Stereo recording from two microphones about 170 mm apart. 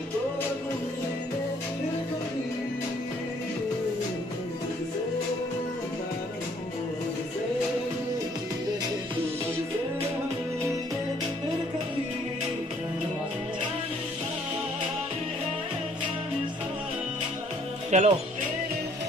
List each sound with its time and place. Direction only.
17.9 s music: 40° right (ahead or behind)